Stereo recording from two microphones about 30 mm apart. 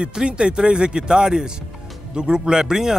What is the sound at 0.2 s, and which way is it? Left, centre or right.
Speech, right.